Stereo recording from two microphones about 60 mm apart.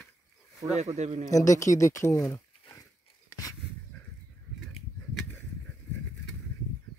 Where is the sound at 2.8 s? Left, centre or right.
Left.